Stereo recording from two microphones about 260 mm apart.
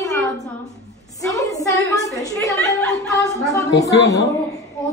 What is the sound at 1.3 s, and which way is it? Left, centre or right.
A woman's voice, centre.